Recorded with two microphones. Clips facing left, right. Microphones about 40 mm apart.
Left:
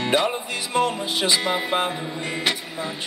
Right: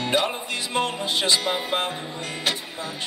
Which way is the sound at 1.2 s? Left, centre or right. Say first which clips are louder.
Left 3 dB; left.